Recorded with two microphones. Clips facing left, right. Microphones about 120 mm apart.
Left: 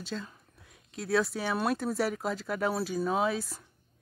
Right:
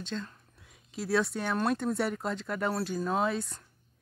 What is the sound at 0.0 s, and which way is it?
Speech, 5° left (ahead or behind).